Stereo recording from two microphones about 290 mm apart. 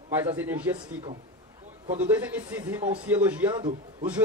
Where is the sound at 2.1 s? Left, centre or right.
Centre.